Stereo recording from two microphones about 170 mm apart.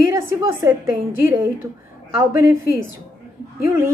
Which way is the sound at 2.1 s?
15° right (ahead or behind).